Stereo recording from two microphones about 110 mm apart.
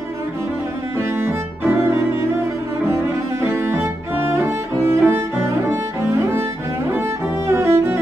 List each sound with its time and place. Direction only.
0.9 s music: 20° right (ahead or behind)
2.9 s cello: 25° right (ahead or behind)
4.8 s music: 25° right (ahead or behind)
6.9 s cello: 20° right (ahead or behind)